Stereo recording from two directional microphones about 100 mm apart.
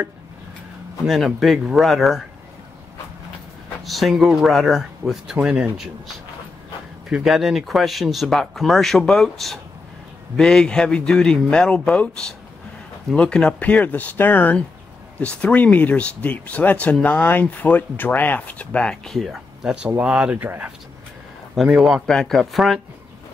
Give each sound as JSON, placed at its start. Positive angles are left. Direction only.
{"t": 1.0, "sound": "speech", "side_deg": 0}
{"t": 3.8, "sound": "speech", "side_deg": 0}
{"t": 7.1, "sound": "speech", "side_deg": -5}
{"t": 20.0, "sound": "speech", "side_deg": -10}
{"t": 21.6, "sound": "speech", "side_deg": -5}
{"t": 22.0, "sound": "speech", "side_deg": 5}